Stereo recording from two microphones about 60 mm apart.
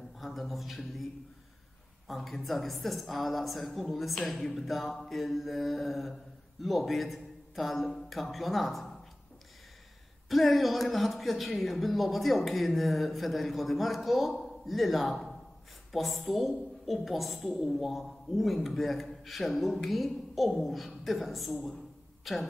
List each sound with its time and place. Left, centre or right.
0.2 s a woman's voice: centre
2.0 s a woman's voice: centre
10.2 s a woman's voice: centre